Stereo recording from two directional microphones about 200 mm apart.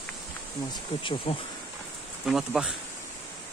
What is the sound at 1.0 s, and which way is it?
Speech, 25° left (ahead or behind).